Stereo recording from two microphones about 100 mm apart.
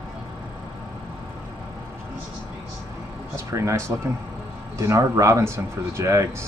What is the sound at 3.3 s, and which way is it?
A man's voice, 30° right (ahead or behind).